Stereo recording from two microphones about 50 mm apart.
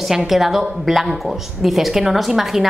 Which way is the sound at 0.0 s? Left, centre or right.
Centre.